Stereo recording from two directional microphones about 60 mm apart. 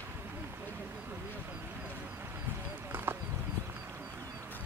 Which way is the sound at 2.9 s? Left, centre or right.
Right.